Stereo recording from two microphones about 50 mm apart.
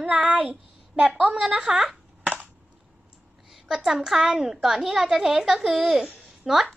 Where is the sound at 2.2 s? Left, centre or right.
Right.